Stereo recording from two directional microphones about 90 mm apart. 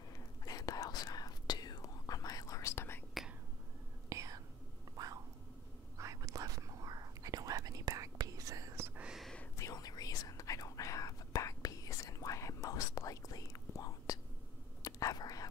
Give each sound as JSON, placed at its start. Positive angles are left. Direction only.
{"t": 0.4, "sound": "whispering", "side_deg": 45}
{"t": 4.1, "sound": "whispering", "side_deg": -35}
{"t": 4.9, "sound": "a sound", "side_deg": -45}
{"t": 5.9, "sound": "whispering", "side_deg": -35}
{"t": 8.7, "sound": "whispering", "side_deg": -25}
{"t": 9.0, "sound": "whispering", "side_deg": -5}
{"t": 9.6, "sound": "whispering", "side_deg": 40}